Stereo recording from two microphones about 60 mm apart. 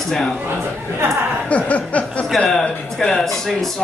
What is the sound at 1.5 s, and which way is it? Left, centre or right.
Speech, left.